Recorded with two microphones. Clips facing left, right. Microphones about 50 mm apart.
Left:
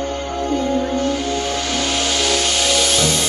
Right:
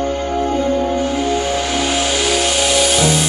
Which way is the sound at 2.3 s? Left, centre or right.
Centre.